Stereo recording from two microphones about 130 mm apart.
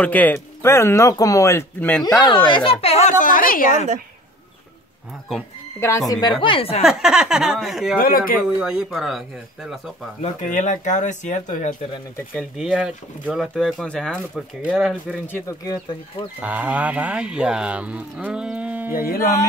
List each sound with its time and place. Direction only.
0.0 s speech: 10° left (ahead or behind)
2.0 s speech: 30° left (ahead or behind); by 3.1 s 45° left (ahead or behind)
3.1 s a woman's voice: 85° left
5.8 s speech: 25° left (ahead or behind)
6.4 s a woman's voice: 45° left (ahead or behind)
6.8 s speech: 5° right (ahead or behind)
8.0 s speech: 90° left
8.4 s speech: 5° right (ahead or behind)
10.4 s speech: 75° left (ahead or behind)
12.5 s speech: 5° right (ahead or behind)
15.2 s speech: 15° left (ahead or behind)
15.6 s speech: 30° left (ahead or behind)
16.3 s speech: 10° right (ahead or behind)